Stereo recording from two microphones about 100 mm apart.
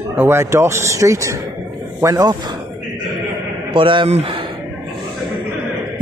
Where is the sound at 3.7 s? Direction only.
55° right (ahead or behind); by 4.4 s 75° right (ahead or behind).